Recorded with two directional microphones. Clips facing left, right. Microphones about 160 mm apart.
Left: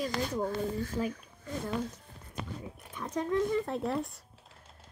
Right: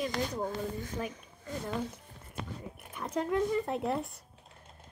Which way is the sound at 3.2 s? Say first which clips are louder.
Left 1 dB; 5° right (ahead or behind).